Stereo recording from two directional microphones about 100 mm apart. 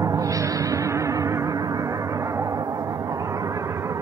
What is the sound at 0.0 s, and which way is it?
Music, 35° right (ahead or behind).